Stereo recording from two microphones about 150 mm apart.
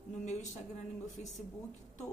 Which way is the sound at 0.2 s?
50° left (ahead or behind).